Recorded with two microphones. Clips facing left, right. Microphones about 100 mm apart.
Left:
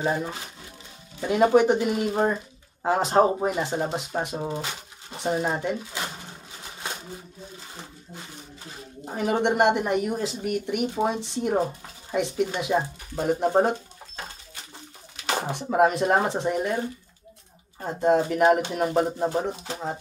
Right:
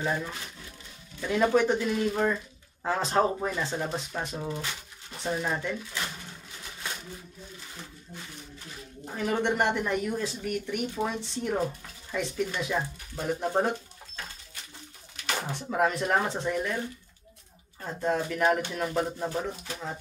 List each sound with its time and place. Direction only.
0.0 s speech: 30° left (ahead or behind)
15.2 s a sound: 30° left (ahead or behind)
15.5 s speech: 25° left (ahead or behind)